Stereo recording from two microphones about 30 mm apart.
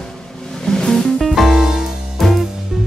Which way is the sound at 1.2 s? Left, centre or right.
Centre.